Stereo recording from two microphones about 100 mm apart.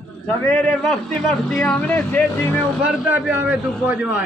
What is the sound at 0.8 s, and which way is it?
A man's voice, 5° left (ahead or behind).